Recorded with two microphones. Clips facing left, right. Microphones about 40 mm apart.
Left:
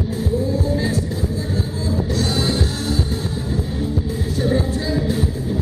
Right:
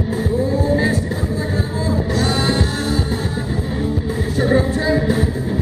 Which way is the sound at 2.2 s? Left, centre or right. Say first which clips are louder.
Right 2 dB; right.